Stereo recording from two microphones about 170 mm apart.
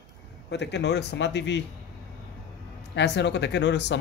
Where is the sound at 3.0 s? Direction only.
90° left.